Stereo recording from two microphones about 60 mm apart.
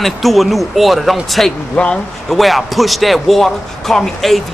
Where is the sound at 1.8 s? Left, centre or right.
Centre.